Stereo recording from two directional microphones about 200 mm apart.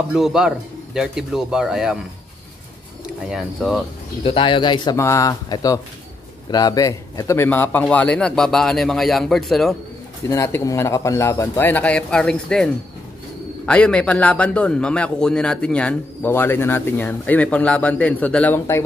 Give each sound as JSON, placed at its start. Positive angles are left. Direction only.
{"t": 0.1, "sound": "a man's voice", "side_deg": -5}
{"t": 3.3, "sound": "a man's voice", "side_deg": 0}
{"t": 4.2, "sound": "a man's voice", "side_deg": 25}
{"t": 10.3, "sound": "a man's voice", "side_deg": 15}